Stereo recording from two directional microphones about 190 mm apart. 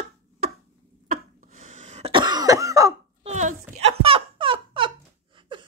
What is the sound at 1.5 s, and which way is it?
Cough, 40° right (ahead or behind).